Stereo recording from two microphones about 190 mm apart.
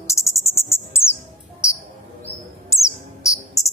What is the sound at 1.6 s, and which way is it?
Cricket, 15° left (ahead or behind).